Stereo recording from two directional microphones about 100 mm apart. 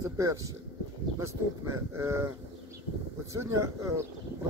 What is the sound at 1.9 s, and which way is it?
Speech, 25° right (ahead or behind).